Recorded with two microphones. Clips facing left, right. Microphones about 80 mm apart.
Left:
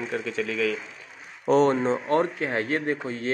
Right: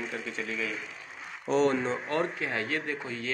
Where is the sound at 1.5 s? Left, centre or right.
Left.